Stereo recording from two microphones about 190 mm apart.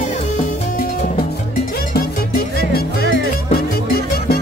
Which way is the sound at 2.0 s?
55° left (ahead or behind).